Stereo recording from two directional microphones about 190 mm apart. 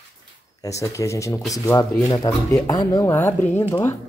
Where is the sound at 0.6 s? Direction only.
15° left (ahead or behind).